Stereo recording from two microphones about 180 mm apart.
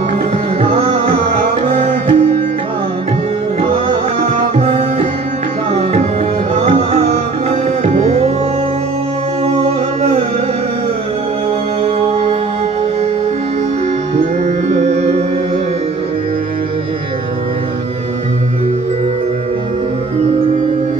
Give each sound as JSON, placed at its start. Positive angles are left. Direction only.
{"t": 0.6, "sound": "music", "side_deg": -35}
{"t": 4.2, "sound": "tabla", "side_deg": -35}
{"t": 6.5, "sound": "music", "side_deg": -40}
{"t": 11.8, "sound": "music", "side_deg": -35}
{"t": 14.7, "sound": "music", "side_deg": -40}